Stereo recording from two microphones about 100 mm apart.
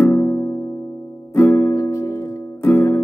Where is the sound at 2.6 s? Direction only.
20° left (ahead or behind).